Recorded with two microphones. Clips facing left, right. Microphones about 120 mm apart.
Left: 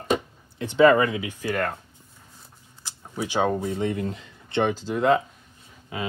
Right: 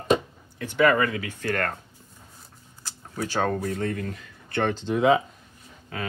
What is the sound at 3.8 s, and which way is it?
Speech, 20° left (ahead or behind).